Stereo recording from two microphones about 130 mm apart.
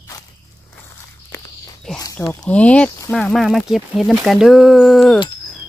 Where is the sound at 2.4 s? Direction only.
10° left (ahead or behind).